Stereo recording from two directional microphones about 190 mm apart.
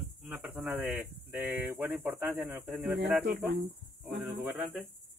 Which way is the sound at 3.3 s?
50° right (ahead or behind).